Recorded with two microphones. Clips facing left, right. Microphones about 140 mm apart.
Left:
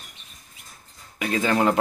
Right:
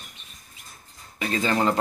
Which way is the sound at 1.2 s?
10° left (ahead or behind).